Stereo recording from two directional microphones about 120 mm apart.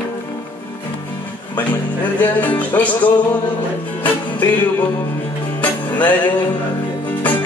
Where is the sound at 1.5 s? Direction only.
15° left (ahead or behind).